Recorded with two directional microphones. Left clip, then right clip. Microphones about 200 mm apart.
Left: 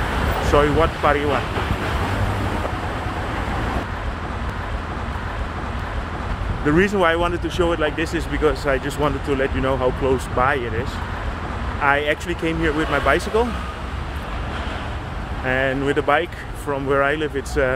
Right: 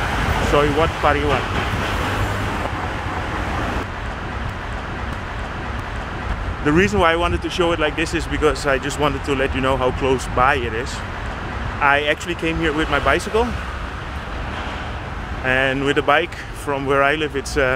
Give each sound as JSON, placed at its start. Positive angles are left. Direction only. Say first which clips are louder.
{"t": 0.5, "sound": "speech", "louder": "left 1 dB", "side_deg": -5}
{"t": 6.6, "sound": "speech", "louder": "right 1 dB", "side_deg": -10}
{"t": 11.8, "sound": "speech", "louder": "right 2 dB", "side_deg": -10}
{"t": 15.4, "sound": "speech", "louder": "right 2 dB", "side_deg": -10}